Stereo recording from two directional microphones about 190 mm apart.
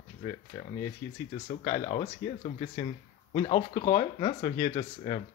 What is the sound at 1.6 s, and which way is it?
Speech, 25° left (ahead or behind).